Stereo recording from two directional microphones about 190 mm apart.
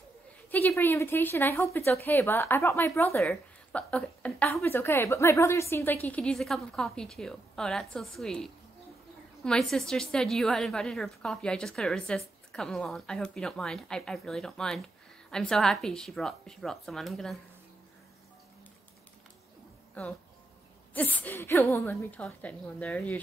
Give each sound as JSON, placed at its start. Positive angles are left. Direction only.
{"t": 0.5, "sound": "a woman's voice", "side_deg": 10}
{"t": 19.9, "sound": "a woman's voice", "side_deg": 5}